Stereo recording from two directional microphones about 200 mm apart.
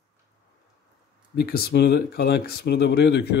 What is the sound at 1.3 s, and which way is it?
Speech, 50° left (ahead or behind).